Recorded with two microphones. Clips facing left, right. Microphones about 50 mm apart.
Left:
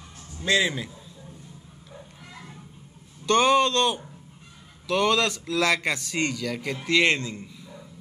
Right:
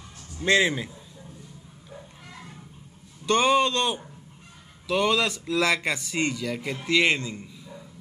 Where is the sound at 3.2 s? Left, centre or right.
Centre.